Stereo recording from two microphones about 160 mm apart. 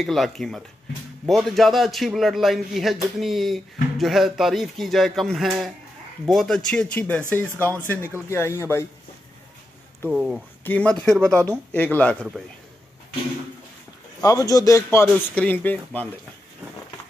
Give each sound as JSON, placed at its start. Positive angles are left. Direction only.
{"t": 0.0, "sound": "a man's voice", "side_deg": 0}
{"t": 10.0, "sound": "a man's voice", "side_deg": -5}
{"t": 10.6, "sound": "a man's voice", "side_deg": 10}
{"t": 14.2, "sound": "a man's voice", "side_deg": 20}